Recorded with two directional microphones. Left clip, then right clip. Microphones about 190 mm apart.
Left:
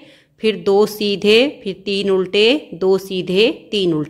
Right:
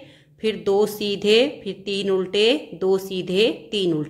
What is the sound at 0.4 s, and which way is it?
A woman's voice, 25° left (ahead or behind).